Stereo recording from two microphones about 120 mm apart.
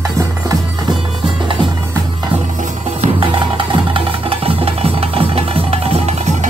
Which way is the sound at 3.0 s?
90° right.